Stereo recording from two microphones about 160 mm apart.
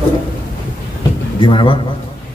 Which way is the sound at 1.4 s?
30° left (ahead or behind).